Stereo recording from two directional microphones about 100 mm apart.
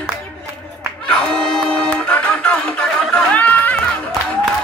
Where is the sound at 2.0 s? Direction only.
15° left (ahead or behind).